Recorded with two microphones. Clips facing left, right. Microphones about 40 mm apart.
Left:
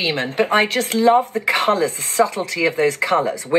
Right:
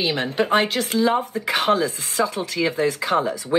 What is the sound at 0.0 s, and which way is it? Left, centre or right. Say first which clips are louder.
Speech: left 2 dB; left.